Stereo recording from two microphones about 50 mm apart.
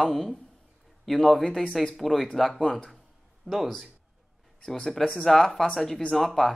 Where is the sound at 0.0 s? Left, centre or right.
Centre.